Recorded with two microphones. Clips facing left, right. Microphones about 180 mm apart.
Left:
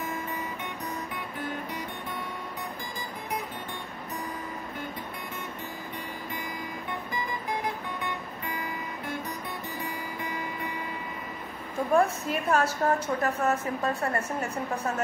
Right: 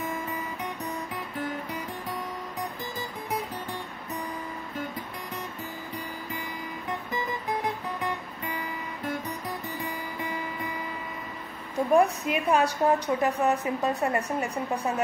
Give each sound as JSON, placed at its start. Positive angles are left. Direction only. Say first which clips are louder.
{"t": 11.9, "sound": "a woman's voice", "louder": "right 2 dB", "side_deg": -15}